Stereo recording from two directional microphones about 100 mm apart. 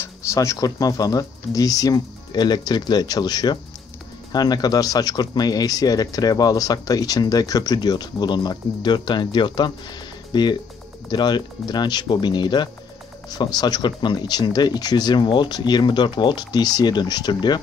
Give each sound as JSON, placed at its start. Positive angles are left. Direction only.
{"t": 0.0, "sound": "speech", "side_deg": 30}